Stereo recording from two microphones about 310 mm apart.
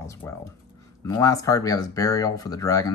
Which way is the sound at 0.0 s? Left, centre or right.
Centre.